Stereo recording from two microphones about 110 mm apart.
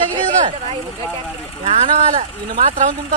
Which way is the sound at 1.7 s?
80° right.